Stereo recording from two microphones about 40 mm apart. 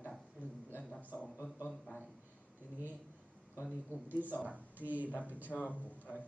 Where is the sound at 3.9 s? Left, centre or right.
Right.